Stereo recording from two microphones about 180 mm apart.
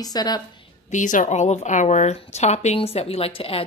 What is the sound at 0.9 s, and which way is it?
A woman's voice, 45° left (ahead or behind).